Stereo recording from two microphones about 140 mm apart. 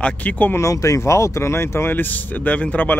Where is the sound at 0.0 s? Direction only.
10° left (ahead or behind).